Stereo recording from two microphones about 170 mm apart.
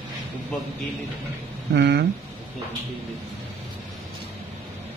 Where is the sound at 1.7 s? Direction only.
80° right.